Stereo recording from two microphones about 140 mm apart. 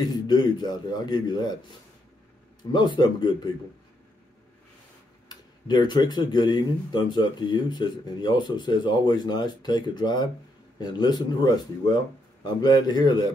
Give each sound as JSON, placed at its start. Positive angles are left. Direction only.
{"t": 0.0, "sound": "speech", "side_deg": 30}
{"t": 2.7, "sound": "speech", "side_deg": 30}
{"t": 5.3, "sound": "a man's voice", "side_deg": 30}
{"t": 12.6, "sound": "a man's voice", "side_deg": 30}